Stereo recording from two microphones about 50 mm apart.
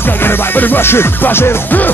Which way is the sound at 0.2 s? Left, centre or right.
Left.